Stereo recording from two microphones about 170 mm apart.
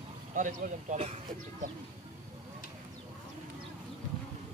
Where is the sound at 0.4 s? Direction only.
45° right (ahead or behind).